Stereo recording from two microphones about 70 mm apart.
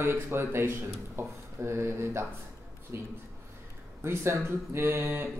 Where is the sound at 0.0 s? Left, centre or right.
Right.